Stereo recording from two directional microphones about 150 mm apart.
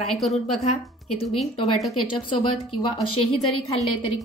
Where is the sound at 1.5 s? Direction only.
35° left (ahead or behind).